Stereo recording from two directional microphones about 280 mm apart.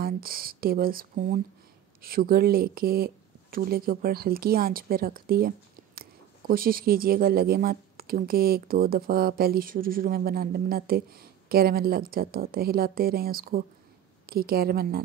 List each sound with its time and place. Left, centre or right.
0.0 s speech: right